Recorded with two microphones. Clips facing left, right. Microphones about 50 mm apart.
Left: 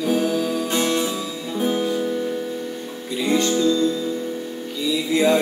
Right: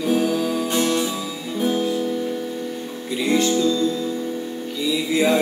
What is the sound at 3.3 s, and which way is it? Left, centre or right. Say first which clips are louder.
Music: even; centre.